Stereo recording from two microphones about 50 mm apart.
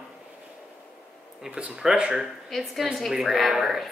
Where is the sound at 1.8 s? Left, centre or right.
Centre.